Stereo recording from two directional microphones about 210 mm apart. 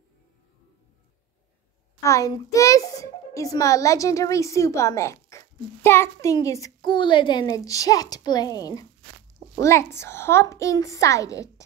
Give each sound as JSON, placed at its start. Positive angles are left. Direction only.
{"t": 2.0, "sound": "a child's voice", "side_deg": 15}